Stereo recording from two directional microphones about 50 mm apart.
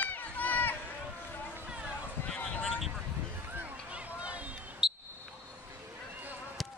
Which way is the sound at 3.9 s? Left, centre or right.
Right.